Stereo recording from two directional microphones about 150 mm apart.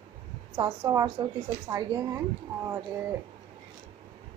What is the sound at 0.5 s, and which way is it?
A woman's voice, 30° right (ahead or behind).